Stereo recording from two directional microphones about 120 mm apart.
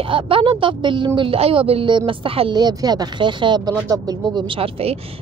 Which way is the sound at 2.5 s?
35° right (ahead or behind).